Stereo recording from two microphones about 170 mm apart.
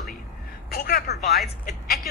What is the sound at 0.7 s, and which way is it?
Speech, 60° left (ahead or behind).